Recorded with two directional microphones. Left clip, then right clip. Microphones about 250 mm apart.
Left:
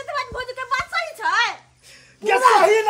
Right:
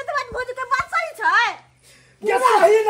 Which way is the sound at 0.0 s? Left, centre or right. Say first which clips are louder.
Right 2 dB; centre.